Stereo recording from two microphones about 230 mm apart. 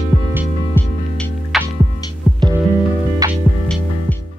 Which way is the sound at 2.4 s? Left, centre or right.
Centre.